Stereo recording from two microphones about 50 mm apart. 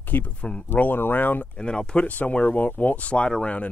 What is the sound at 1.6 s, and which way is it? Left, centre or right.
Speech, centre.